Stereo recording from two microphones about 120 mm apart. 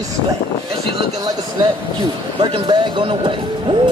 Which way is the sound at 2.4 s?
40° right (ahead or behind).